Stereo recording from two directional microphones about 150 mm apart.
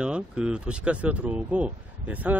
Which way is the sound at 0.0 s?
5° right (ahead or behind).